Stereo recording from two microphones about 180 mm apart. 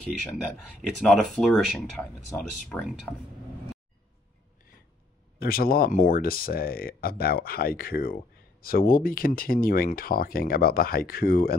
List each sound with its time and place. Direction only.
1.0 s speech: centre (ahead or behind)
5.4 s speech: 55° left (ahead or behind)